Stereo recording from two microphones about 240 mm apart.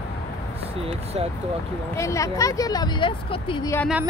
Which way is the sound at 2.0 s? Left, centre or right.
Centre.